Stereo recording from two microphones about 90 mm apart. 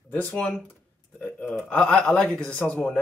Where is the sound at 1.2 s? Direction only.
20° left (ahead or behind).